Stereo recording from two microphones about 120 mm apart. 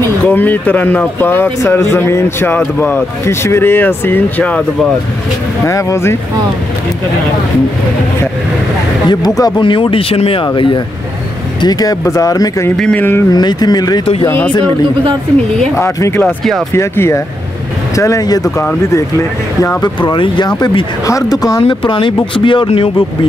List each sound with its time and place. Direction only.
0.2 s speech: 15° left (ahead or behind)
5.7 s speech: 25° left (ahead or behind)
9.1 s speech: 35° left (ahead or behind)
9.6 s speech: 45° left (ahead or behind)
10.4 s speech: 40° left (ahead or behind)
12.7 s speech: 10° left (ahead or behind)
13.3 s speech: 35° left (ahead or behind)
15.7 s speech: 25° left (ahead or behind)
19.8 s speech: 40° left (ahead or behind)
21.5 s speech: 45° left (ahead or behind)